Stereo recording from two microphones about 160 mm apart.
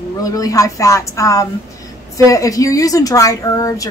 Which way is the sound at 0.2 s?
20° left (ahead or behind).